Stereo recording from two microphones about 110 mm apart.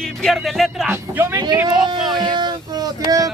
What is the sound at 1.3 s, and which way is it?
Speech, 35° right (ahead or behind).